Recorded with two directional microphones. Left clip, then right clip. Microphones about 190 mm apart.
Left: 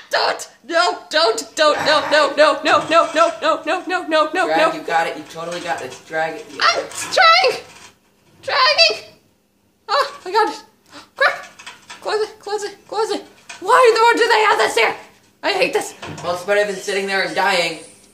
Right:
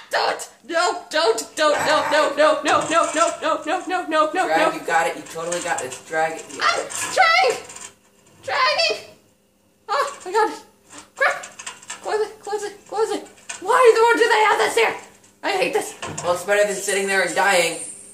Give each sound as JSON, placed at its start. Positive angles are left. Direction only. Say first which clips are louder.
{"t": 0.1, "sound": "speech", "louder": "left 3 dB", "side_deg": 15}
{"t": 4.8, "sound": "speech", "louder": "left 1 dB", "side_deg": 0}
{"t": 6.6, "sound": "speech", "louder": "left 4 dB", "side_deg": 20}
{"t": 12.0, "sound": "a woman's voice", "louder": "left 2 dB", "side_deg": 20}
{"t": 16.0, "sound": "speech", "louder": "right 1 dB", "side_deg": 0}